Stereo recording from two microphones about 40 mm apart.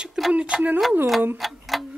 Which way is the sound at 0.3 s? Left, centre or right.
Right.